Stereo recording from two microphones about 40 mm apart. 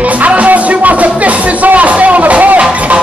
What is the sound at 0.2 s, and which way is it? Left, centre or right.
Music, right.